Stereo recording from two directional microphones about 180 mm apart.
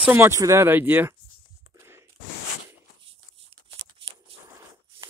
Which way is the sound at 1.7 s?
15° right (ahead or behind).